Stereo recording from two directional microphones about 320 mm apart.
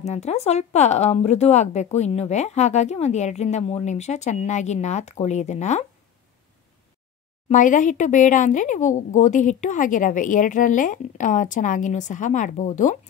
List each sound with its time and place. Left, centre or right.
0.0 s speech: left
7.4 s speech: left